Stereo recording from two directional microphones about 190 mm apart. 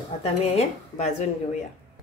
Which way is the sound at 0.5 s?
35° left (ahead or behind).